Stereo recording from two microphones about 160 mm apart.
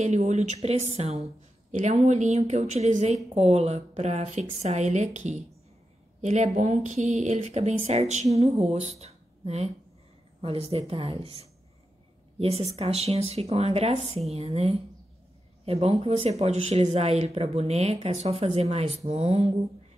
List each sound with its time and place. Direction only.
0.0 s a woman's voice: 45° right (ahead or behind)